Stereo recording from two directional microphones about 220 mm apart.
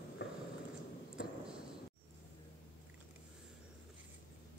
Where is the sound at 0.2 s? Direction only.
50° left (ahead or behind).